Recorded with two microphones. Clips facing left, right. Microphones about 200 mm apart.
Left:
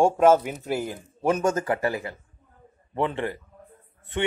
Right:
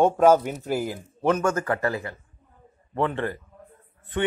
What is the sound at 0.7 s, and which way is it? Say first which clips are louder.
Speech: right 1 dB; 5° right (ahead or behind).